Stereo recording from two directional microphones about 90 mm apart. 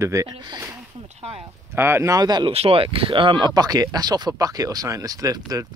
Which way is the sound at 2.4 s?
90° right.